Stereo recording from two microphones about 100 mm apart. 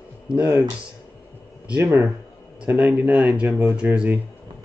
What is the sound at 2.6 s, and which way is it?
Speech, 20° right (ahead or behind).